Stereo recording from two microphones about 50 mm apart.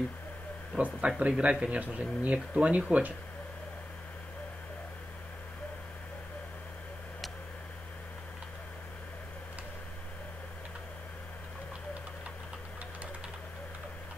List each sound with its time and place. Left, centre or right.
0.7 s speech: right